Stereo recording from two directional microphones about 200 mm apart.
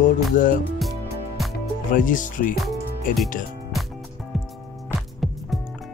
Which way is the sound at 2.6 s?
Centre (ahead or behind).